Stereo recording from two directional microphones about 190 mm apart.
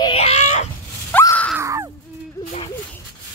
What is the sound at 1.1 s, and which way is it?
Groan, 10° left (ahead or behind).